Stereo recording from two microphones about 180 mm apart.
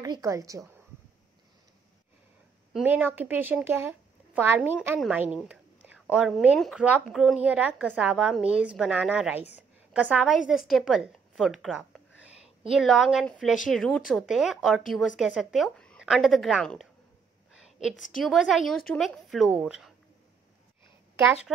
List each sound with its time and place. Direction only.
0.0 s a woman's voice: 20° right (ahead or behind)
2.7 s a woman's voice: 10° right (ahead or behind)
18.1 s a woman's voice: centre (ahead or behind)
21.5 s a woman's voice: centre (ahead or behind)